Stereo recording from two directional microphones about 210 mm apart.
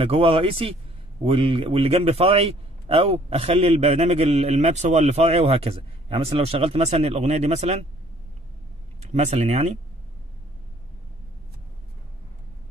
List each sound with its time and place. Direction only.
0.0 s a man's voice: 25° right (ahead or behind)
9.0 s speech: 30° right (ahead or behind)